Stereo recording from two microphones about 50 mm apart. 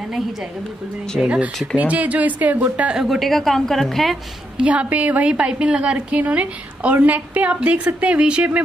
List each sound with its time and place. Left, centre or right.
1.2 s a woman's voice: right
2.9 s speech: centre
3.2 s a woman's voice: centre
4.6 s a woman's voice: right